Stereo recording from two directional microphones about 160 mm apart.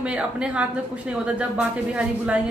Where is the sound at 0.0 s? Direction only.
5° right (ahead or behind).